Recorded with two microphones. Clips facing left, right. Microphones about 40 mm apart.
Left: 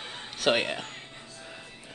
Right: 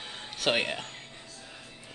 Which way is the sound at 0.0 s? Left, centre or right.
Centre.